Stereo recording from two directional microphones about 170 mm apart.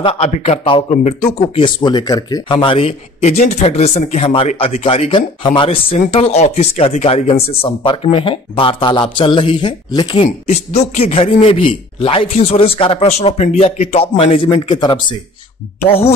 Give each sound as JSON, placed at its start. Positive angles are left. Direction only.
{"t": 0.0, "sound": "speech", "side_deg": 35}